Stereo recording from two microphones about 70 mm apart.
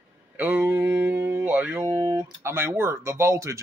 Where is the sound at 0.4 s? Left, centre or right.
Right.